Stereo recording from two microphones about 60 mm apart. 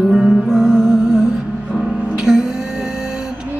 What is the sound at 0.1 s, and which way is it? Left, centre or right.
Music, centre.